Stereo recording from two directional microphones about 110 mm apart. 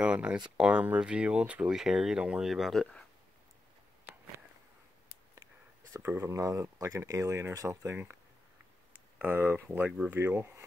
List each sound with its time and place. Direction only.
0.0 s speech: 10° right (ahead or behind); by 3.1 s 5° left (ahead or behind)
5.9 s speech: 20° right (ahead or behind)
9.2 s speech: 20° right (ahead or behind)